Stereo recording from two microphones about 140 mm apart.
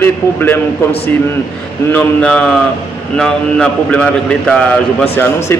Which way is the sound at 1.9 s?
10° left (ahead or behind).